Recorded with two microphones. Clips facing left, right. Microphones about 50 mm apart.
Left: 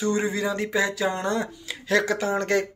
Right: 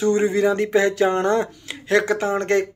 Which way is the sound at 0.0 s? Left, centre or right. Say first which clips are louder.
Right 7 dB; right.